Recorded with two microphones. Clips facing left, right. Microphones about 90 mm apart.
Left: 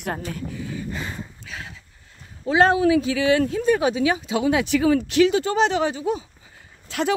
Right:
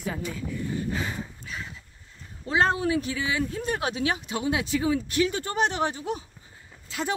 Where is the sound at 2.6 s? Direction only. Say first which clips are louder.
Left 7 dB; 90° left; by 3.5 s 75° left (ahead or behind).